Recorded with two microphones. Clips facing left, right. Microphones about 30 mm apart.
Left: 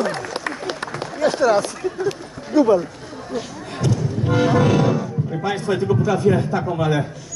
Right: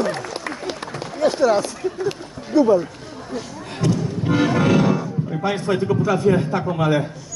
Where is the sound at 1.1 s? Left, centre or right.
Left.